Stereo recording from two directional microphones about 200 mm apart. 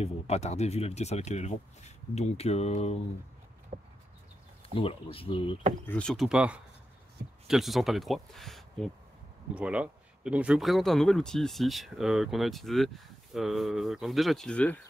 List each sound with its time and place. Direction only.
0.0 s speech: 35° left (ahead or behind)
3.7 s a sound: 35° right (ahead or behind)
4.7 s speech: 25° left (ahead or behind)
5.9 s speech: 5° left (ahead or behind)